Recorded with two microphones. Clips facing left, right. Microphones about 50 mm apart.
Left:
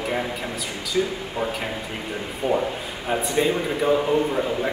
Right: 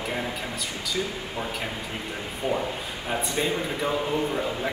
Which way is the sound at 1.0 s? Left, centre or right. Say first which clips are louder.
Left 7 dB; centre.